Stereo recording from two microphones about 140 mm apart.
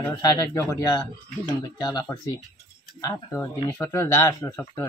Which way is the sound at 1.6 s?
30° left (ahead or behind).